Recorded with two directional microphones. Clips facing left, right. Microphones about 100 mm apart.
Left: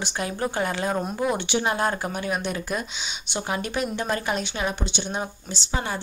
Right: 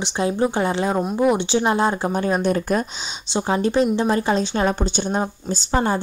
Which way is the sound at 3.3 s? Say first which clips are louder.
Right 9 dB; 30° right (ahead or behind).